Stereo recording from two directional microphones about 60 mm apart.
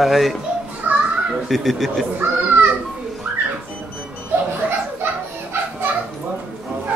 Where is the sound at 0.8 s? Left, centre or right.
Right.